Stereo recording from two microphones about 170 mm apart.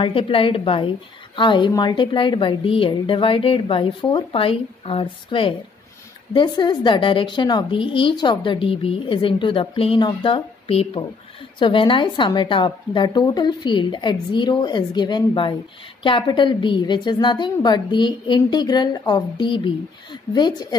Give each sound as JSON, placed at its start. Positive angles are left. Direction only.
{"t": 0.0, "sound": "a woman's voice", "side_deg": 30}